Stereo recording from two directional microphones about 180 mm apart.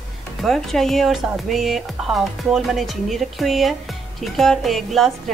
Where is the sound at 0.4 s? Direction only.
Centre (ahead or behind).